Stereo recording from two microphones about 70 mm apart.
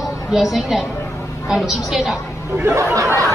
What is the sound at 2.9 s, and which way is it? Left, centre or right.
Speech, right.